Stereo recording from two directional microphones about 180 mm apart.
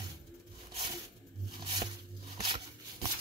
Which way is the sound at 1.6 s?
25° right (ahead or behind).